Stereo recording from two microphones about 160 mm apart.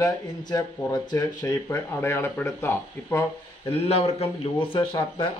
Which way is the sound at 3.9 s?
35° left (ahead or behind).